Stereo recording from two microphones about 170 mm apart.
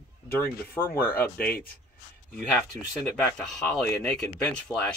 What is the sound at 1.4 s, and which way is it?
Speech, 60° left (ahead or behind).